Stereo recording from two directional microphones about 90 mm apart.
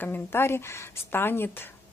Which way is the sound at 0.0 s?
25° left (ahead or behind).